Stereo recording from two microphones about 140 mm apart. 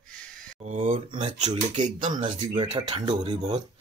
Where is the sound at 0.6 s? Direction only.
55° right (ahead or behind).